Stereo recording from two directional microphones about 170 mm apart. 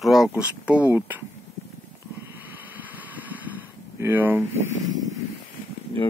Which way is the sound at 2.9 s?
10° right (ahead or behind).